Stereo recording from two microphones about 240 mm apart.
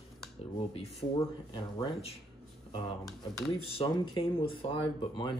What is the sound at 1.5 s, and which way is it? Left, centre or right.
Speech, left.